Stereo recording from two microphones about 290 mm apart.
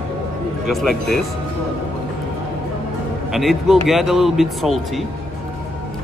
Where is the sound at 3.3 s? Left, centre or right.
Centre.